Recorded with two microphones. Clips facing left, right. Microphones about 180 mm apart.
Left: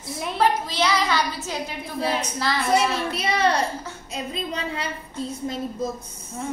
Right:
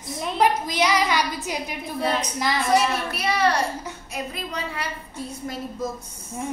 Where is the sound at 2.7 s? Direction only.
25° left (ahead or behind).